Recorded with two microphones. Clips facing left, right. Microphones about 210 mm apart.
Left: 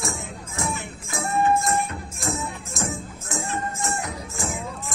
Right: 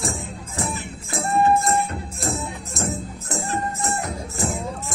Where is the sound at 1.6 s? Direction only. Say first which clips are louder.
Right 2 dB; 35° right (ahead or behind).